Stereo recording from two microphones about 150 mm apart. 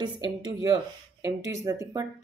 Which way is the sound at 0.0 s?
30° right (ahead or behind).